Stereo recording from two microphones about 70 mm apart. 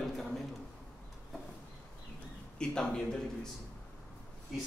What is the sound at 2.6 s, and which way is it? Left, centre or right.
Speech, centre.